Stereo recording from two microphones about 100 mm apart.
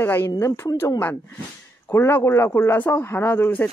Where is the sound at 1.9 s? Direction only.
20° left (ahead or behind).